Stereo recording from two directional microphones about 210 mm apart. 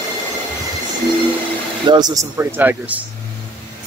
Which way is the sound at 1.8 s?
20° right (ahead or behind).